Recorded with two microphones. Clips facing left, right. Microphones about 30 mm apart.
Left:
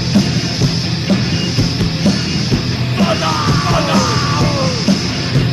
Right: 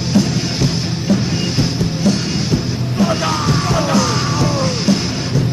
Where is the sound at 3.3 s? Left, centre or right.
Left.